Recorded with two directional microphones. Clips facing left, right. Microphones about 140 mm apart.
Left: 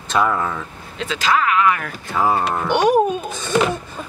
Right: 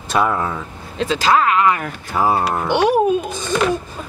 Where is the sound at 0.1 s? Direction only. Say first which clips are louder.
Right 1 dB; 10° right (ahead or behind).